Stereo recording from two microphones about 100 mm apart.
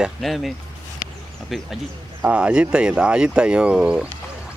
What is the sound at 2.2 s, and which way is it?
Speech, 10° right (ahead or behind).